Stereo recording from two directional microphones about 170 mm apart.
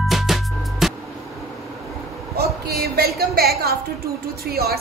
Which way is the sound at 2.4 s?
65° right (ahead or behind).